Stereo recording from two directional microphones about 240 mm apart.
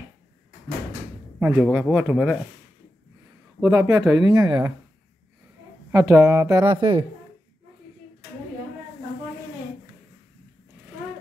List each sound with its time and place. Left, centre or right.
1.4 s speech: centre
3.6 s speech: centre
5.9 s speech: centre